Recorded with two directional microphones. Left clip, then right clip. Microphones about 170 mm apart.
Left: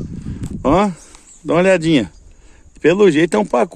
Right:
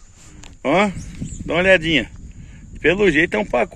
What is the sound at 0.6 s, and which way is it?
Speech, 15° left (ahead or behind).